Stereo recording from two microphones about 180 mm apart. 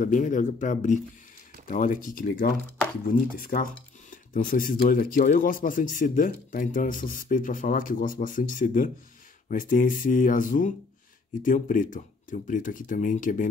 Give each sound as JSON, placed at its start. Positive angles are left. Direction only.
{"t": 0.0, "sound": "speech", "side_deg": 45}